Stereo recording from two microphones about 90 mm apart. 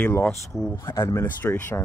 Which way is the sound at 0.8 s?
30° left (ahead or behind).